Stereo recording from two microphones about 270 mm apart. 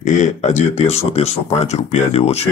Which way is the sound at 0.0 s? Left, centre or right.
Left.